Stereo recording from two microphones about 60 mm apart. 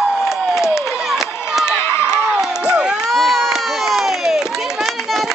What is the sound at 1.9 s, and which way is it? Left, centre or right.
Crowd, left.